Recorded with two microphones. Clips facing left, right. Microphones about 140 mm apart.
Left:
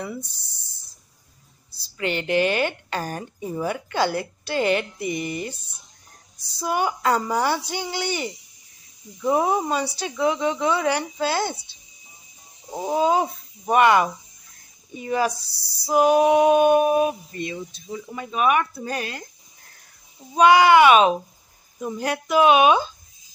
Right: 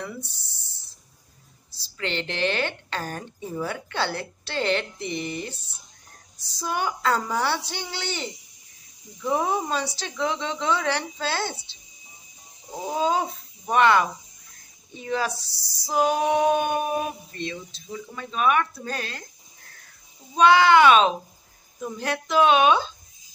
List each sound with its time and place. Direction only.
1.7 s speech: 10° left (ahead or behind)
6.6 s speech: 10° left (ahead or behind)
12.7 s speech: 15° left (ahead or behind)
17.8 s speech: 30° left (ahead or behind)
18.1 s speech: 10° left (ahead or behind)
20.3 s speech: 10° left (ahead or behind)